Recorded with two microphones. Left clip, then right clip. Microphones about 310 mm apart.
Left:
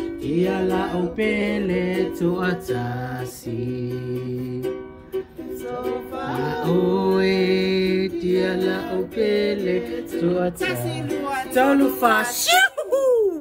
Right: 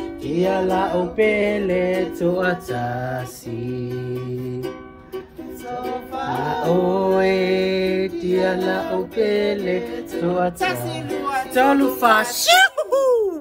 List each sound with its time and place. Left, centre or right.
0.3 s music: centre
1.2 s mantra: left
2.1 s music: centre
5.9 s music: centre
7.2 s music: centre
11.5 s music: right